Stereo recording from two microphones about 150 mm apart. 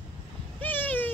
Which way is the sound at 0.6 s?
10° left (ahead or behind).